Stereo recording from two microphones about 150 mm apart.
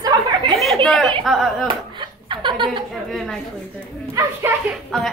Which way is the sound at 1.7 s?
30° right (ahead or behind).